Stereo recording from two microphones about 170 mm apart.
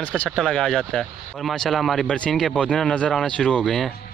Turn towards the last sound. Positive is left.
turn(degrees=0)  # may be behind; listen again after turning